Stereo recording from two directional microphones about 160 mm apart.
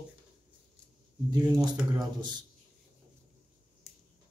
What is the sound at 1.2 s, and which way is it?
Speech, 25° right (ahead or behind).